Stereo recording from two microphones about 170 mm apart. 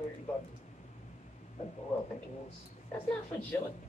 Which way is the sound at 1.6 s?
45° left (ahead or behind).